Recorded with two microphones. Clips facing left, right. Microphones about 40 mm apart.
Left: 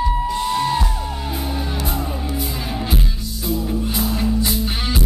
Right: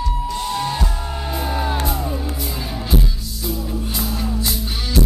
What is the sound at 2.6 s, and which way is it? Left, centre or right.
Music, left.